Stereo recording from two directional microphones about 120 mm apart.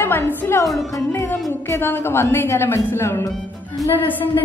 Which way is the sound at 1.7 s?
20° left (ahead or behind).